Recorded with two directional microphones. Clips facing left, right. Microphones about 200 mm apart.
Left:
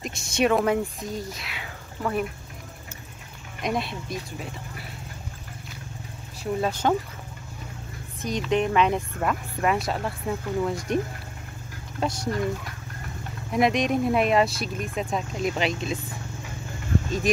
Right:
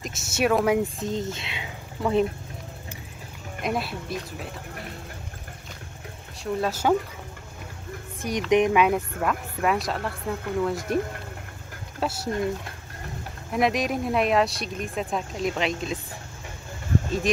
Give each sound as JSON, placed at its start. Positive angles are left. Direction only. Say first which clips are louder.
{"t": 0.0, "sound": "speech", "louder": "left 1 dB", "side_deg": -5}
{"t": 0.9, "sound": "speech", "louder": "right 4 dB", "side_deg": -25}
{"t": 3.6, "sound": "speech", "louder": "even", "side_deg": -5}
{"t": 6.4, "sound": "speech", "louder": "even", "side_deg": -5}
{"t": 8.2, "sound": "speech", "louder": "right 3 dB", "side_deg": -15}
{"t": 12.0, "sound": "speech", "louder": "left 1 dB", "side_deg": -5}
{"t": 13.5, "sound": "speech", "louder": "left 2 dB", "side_deg": 0}